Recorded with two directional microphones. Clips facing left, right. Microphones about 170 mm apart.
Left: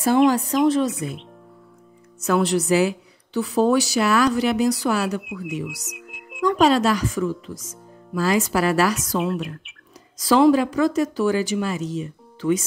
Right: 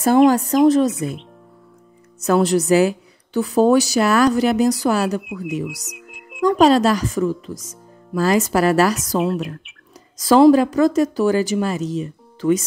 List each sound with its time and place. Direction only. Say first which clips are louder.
0.0 s a woman's voice: right 4 dB; 45° right (ahead or behind)
0.9 s speech: right 4 dB; centre (ahead or behind)
2.2 s a woman's voice: right 4 dB; 40° right (ahead or behind)
5.9 s music: even; centre (ahead or behind)
6.6 s a woman's voice: right 3 dB; 40° right (ahead or behind)
9.2 s speech: right 4 dB; centre (ahead or behind)
10.1 s a woman's voice: right 4 dB; 45° right (ahead or behind)